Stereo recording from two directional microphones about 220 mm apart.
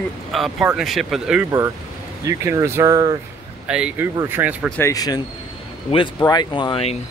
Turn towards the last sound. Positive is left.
turn(degrees=25)  # may be behind; listen again after turning